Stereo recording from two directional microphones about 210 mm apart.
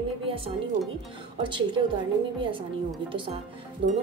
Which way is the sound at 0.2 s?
25° right (ahead or behind).